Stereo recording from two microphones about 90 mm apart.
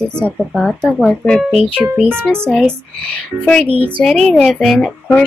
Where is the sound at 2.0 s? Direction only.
25° right (ahead or behind).